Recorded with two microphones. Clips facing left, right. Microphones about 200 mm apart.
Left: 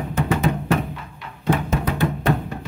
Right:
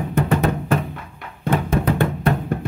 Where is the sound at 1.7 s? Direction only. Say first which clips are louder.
Right 3 dB; 55° right (ahead or behind).